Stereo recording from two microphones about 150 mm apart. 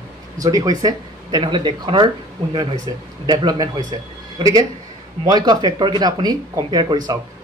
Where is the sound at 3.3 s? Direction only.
30° right (ahead or behind).